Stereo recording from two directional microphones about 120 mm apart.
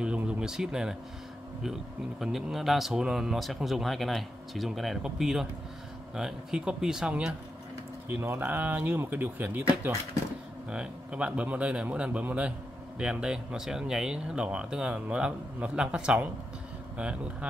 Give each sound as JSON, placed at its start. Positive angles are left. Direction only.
{"t": 0.0, "sound": "a sound", "side_deg": -5}
{"t": 1.6, "sound": "speech", "side_deg": -5}
{"t": 8.1, "sound": "speech", "side_deg": -20}